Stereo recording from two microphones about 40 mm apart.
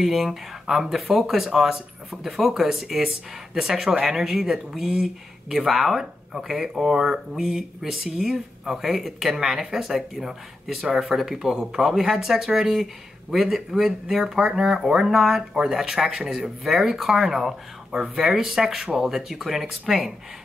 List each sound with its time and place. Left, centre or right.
0.0 s speech: centre